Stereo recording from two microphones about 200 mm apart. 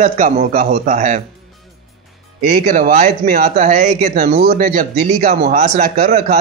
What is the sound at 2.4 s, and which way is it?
Speech, 40° right (ahead or behind).